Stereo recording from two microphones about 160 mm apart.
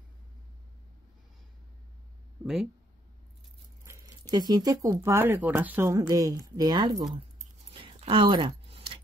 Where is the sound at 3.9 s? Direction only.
25° right (ahead or behind).